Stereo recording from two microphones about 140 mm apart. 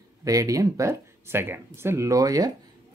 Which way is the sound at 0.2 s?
25° right (ahead or behind).